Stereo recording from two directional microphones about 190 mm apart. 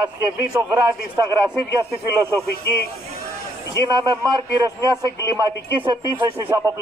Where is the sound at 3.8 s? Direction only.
20° right (ahead or behind).